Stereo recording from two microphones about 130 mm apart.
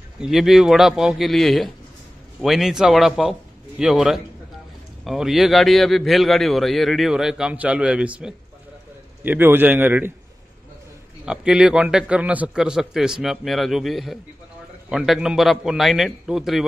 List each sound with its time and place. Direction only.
0.2 s a man's voice: 5° right (ahead or behind)
11.2 s a man's voice: 5° right (ahead or behind)